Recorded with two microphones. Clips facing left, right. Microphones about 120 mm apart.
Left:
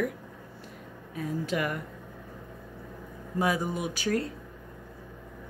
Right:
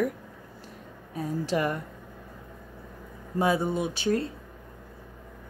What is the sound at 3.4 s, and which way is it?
Speech, 25° right (ahead or behind).